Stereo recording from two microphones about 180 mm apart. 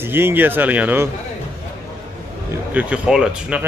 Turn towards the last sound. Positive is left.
turn(degrees=-5)  # may be behind; listen again after turning